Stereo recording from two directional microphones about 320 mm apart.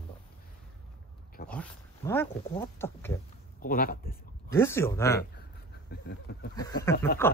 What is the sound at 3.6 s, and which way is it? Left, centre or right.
Speech, left.